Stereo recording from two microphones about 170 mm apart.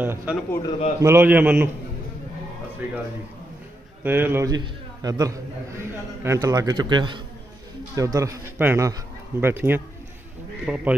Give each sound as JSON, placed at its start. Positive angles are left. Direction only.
{"t": 0.0, "sound": "speech", "side_deg": -10}
{"t": 0.7, "sound": "a man's voice", "side_deg": 40}
{"t": 1.0, "sound": "speech", "side_deg": -15}
{"t": 2.8, "sound": "speech", "side_deg": -10}
{"t": 4.0, "sound": "a man's voice", "side_deg": -10}